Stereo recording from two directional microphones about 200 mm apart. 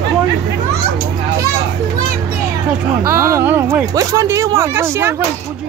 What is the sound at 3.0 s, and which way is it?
Speech, 15° right (ahead or behind).